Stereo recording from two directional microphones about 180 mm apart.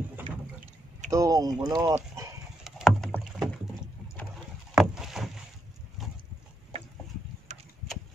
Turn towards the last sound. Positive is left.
turn(degrees=-40)  # may be behind; listen again after turning